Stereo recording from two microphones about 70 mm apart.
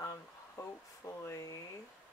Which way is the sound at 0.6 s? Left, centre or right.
Left.